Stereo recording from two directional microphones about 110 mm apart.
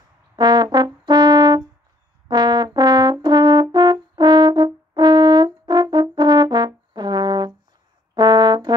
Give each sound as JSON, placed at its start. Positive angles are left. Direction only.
{"t": 0.4, "sound": "brass instrument", "side_deg": -40}